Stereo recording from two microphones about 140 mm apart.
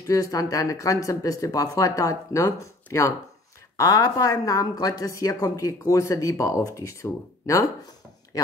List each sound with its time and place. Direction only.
0.0 s speech: 25° left (ahead or behind)